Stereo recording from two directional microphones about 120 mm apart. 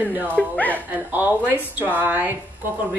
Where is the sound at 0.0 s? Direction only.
15° right (ahead or behind).